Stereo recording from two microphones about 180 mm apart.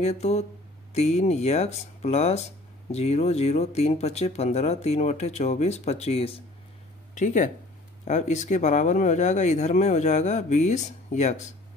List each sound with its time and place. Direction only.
0.0 s speech: 35° left (ahead or behind)
7.2 s speech: 45° left (ahead or behind)